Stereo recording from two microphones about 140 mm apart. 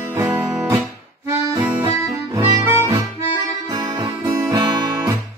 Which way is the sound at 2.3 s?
25° right (ahead or behind).